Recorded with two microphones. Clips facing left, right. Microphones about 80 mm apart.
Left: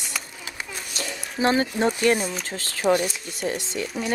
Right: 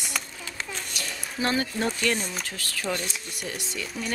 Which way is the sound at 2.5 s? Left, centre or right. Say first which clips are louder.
Left 13 dB; left.